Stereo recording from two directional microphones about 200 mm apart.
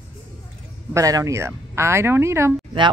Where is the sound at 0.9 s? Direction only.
15° right (ahead or behind).